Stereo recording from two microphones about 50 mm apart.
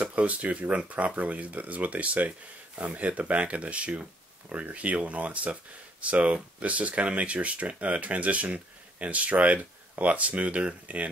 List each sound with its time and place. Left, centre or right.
0.0 s speech: right